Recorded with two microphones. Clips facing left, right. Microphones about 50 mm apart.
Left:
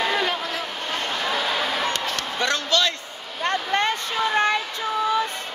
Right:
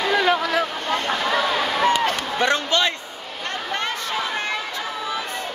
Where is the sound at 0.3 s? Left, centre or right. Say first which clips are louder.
Right 7 dB; right.